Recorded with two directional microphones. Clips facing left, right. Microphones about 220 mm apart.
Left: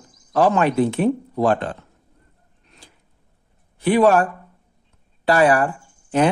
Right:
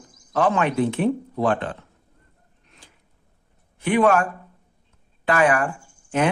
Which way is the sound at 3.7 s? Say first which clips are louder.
Left 3 dB; 35° left (ahead or behind).